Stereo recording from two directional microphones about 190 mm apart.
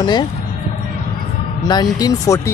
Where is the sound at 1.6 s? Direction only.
20° left (ahead or behind).